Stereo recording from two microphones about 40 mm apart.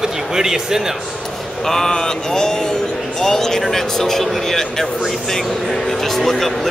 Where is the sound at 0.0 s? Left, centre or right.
Centre.